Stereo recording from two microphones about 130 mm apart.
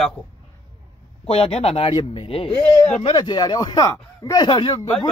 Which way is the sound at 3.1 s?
35° left (ahead or behind).